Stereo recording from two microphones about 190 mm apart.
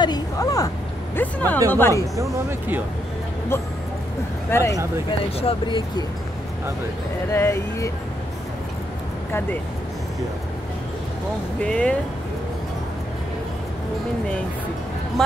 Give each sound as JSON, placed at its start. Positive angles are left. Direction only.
{"t": 0.0, "sound": "a sound", "side_deg": 20}
{"t": 1.1, "sound": "speech", "side_deg": 10}
{"t": 4.5, "sound": "speech", "side_deg": 15}
{"t": 5.4, "sound": "speech", "side_deg": 30}
{"t": 7.3, "sound": "speech", "side_deg": 15}
{"t": 11.6, "sound": "speech", "side_deg": 5}